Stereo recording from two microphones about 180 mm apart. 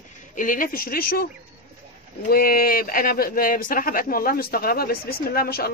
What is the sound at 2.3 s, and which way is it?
Speech, 55° left (ahead or behind).